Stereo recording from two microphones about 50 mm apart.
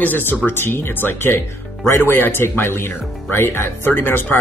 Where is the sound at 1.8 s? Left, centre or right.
Left.